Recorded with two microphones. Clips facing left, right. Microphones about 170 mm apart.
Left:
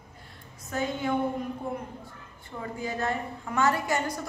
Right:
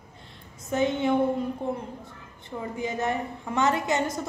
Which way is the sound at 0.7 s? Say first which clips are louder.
Right 5 dB; 25° right (ahead or behind).